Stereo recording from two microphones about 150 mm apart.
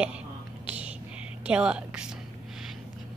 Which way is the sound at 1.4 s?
5° right (ahead or behind).